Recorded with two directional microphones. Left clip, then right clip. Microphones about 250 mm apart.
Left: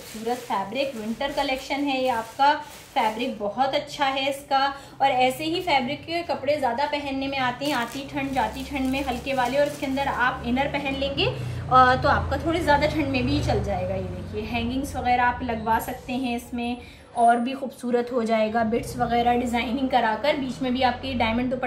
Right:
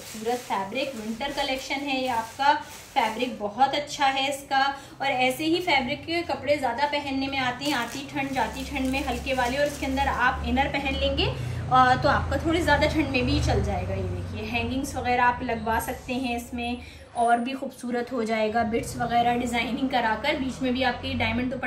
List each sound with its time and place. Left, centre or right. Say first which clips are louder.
0.5 s a woman's voice: left 2 dB; centre
15.0 s a woman's voice: left 1 dB; centre
17.9 s a woman's voice: left 4 dB; centre